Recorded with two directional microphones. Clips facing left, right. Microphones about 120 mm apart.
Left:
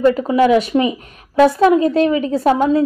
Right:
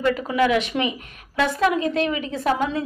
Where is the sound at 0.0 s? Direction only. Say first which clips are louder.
Left 7 dB; 30° left (ahead or behind).